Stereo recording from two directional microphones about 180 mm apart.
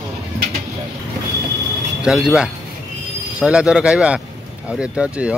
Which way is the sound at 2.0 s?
5° right (ahead or behind).